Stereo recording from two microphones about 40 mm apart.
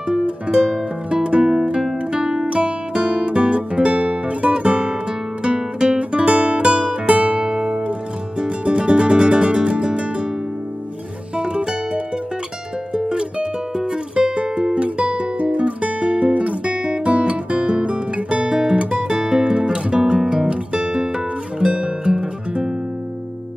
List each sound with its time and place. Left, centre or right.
0.1 s music: centre
1.5 s guitar: centre
2.1 s music: centre
2.9 s music: right
11.3 s music: right